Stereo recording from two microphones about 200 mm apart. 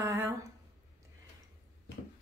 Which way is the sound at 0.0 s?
15° right (ahead or behind).